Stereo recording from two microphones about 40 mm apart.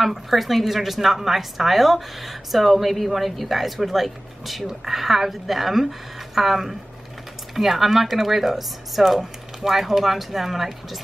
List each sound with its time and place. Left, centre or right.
0.0 s a woman's voice: centre